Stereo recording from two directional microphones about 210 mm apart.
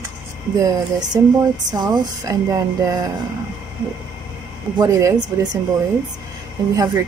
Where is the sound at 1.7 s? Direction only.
20° right (ahead or behind).